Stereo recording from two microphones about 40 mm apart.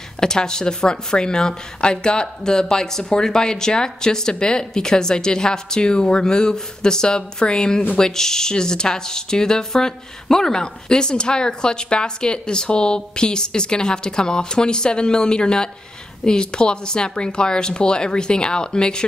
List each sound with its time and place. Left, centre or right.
0.2 s a woman's voice: centre